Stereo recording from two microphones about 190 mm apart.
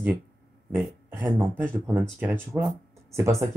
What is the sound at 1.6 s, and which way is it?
Speech, 10° right (ahead or behind).